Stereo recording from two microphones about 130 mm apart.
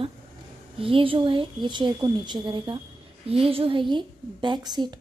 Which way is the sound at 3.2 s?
45° right (ahead or behind).